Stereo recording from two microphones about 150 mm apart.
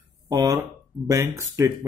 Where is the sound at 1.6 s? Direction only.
20° right (ahead or behind).